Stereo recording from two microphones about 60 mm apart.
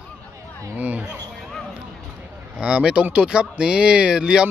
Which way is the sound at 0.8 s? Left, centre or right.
Right.